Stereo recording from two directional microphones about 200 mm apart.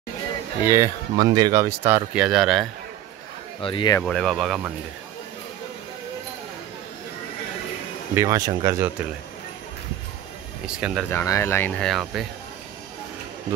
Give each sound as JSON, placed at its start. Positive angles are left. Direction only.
{"t": 0.7, "sound": "speech", "side_deg": -15}
{"t": 3.6, "sound": "speech", "side_deg": 20}
{"t": 4.0, "sound": "speech", "side_deg": 0}
{"t": 8.1, "sound": "speech", "side_deg": -15}
{"t": 10.7, "sound": "speech", "side_deg": -5}
{"t": 11.1, "sound": "speech", "side_deg": 15}
{"t": 11.8, "sound": "speech", "side_deg": 0}